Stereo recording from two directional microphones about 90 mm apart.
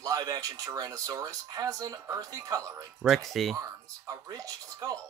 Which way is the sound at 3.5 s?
40° right (ahead or behind).